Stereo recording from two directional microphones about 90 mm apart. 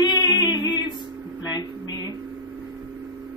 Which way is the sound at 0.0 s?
45° left (ahead or behind).